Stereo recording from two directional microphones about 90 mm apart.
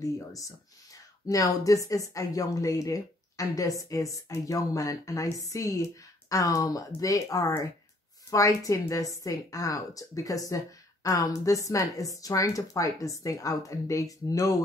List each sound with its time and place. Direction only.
1.2 s speech: 40° left (ahead or behind)